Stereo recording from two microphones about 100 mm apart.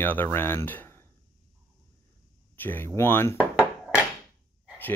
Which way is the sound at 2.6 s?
20° left (ahead or behind).